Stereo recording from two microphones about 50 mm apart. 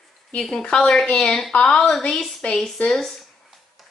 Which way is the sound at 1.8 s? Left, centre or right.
Centre.